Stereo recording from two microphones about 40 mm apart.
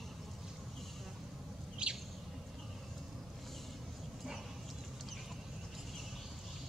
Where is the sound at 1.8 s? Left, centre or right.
Right.